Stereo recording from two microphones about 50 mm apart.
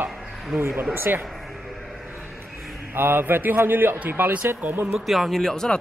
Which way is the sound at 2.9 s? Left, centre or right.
Right.